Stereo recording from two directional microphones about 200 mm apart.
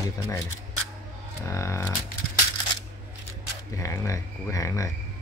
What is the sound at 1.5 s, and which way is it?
Speech, 15° left (ahead or behind).